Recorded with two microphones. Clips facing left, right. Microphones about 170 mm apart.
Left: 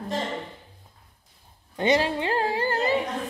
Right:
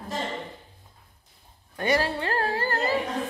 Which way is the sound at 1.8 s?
20° left (ahead or behind).